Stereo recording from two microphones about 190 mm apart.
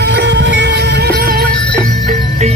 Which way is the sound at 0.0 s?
65° right (ahead or behind).